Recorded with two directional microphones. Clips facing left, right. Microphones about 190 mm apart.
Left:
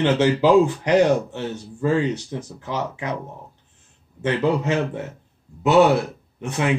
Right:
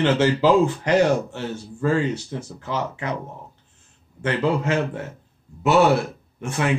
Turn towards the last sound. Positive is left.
turn(degrees=15)  # may be behind; listen again after turning